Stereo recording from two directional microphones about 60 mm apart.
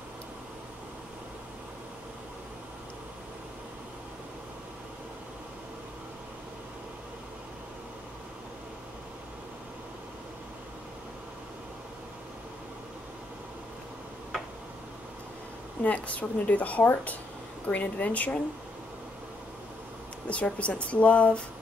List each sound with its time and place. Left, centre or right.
15.8 s speech: left
20.2 s speech: left